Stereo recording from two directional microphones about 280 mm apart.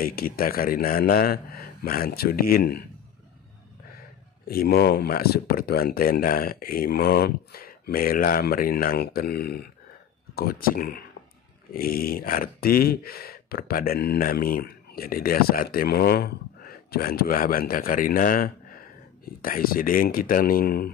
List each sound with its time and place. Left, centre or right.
0.0 s speech: left
4.5 s speech: left